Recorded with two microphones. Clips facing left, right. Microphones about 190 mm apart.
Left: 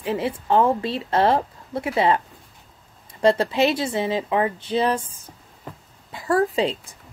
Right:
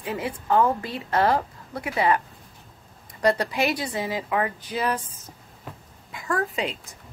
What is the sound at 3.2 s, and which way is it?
A woman's voice, 25° left (ahead or behind).